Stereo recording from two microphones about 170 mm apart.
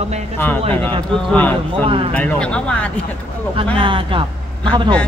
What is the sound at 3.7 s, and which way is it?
A man's voice, 30° right (ahead or behind).